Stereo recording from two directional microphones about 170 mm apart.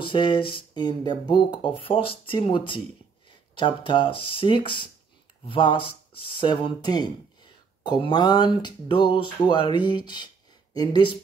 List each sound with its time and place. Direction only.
0.0 s speech: 30° left (ahead or behind)